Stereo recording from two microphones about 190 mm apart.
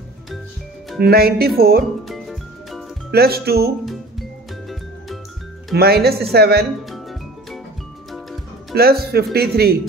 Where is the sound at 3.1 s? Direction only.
55° right (ahead or behind).